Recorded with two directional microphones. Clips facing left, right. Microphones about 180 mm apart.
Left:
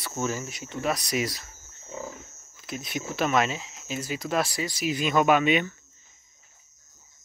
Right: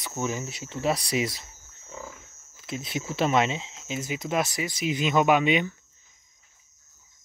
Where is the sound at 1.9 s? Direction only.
20° left (ahead or behind).